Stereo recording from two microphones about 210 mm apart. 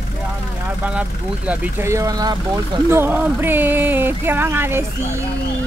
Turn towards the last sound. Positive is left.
turn(degrees=-10)  # may be behind; listen again after turning